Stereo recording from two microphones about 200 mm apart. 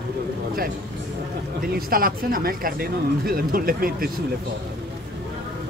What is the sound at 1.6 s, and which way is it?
Speech, 45° right (ahead or behind).